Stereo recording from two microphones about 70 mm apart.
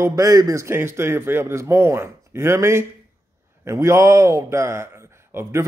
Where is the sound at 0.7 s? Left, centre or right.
Right.